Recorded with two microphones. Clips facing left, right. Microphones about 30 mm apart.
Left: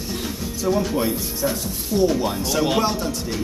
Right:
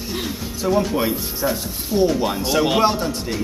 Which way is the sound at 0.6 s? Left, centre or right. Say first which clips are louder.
Right 2 dB; centre.